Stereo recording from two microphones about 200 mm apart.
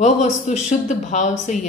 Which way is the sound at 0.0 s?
35° left (ahead or behind).